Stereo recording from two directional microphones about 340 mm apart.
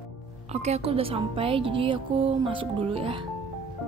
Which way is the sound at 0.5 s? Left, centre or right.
Centre.